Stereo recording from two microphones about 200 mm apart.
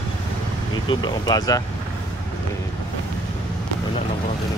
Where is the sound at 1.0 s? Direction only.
20° left (ahead or behind).